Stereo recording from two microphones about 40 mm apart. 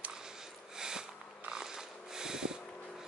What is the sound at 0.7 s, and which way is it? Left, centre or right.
Sniff, centre.